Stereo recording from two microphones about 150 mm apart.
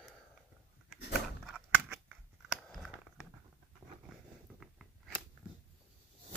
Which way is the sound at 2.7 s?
Centre (ahead or behind).